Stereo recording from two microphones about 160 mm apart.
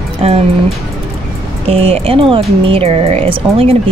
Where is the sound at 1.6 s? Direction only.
40° right (ahead or behind).